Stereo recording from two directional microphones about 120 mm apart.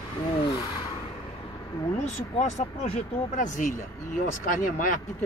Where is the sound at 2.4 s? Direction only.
60° left (ahead or behind).